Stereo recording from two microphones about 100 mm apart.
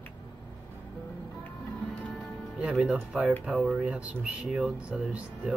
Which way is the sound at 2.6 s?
10° right (ahead or behind).